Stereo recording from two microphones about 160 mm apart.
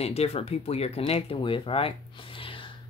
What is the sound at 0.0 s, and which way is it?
Speech, 40° left (ahead or behind).